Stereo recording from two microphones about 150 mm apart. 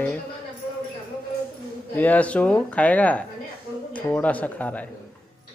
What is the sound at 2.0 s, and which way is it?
Speech, 10° left (ahead or behind).